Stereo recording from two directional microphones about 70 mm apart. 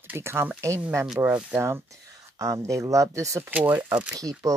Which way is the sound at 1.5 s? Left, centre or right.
Right.